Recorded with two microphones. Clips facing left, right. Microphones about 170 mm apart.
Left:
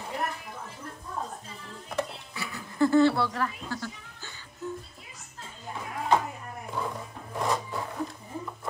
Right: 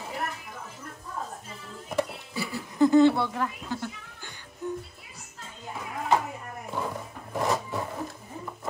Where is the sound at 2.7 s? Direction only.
15° right (ahead or behind).